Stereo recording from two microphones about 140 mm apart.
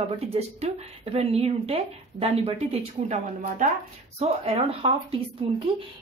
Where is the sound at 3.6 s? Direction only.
65° right (ahead or behind).